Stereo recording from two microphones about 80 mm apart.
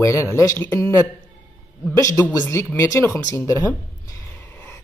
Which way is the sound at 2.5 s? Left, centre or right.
Left.